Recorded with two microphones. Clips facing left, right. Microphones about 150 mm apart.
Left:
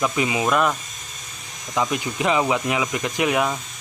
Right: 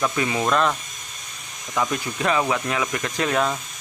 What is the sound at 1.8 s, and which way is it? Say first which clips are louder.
Speech: left 1 dB; 15° left (ahead or behind).